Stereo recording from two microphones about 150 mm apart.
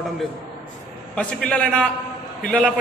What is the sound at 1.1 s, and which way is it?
A man's voice, 5° left (ahead or behind).